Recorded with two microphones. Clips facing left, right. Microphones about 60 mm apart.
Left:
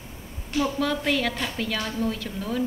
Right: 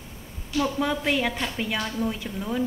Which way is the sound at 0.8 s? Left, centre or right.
Centre.